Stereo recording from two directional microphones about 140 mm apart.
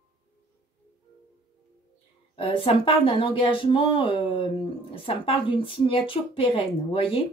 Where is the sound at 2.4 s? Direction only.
40° left (ahead or behind).